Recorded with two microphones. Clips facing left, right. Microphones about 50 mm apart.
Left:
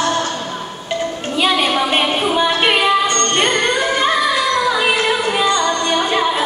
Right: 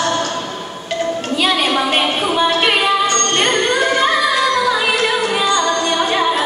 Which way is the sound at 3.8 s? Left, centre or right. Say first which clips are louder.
Right 1 dB; centre.